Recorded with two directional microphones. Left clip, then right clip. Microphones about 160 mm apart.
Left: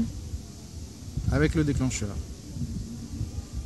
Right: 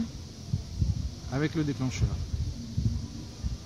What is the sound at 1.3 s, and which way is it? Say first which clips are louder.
Speech: left 5 dB; 50° left (ahead or behind).